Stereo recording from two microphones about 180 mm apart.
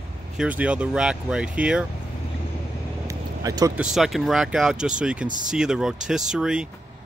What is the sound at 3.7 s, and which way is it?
Speech, 5° right (ahead or behind).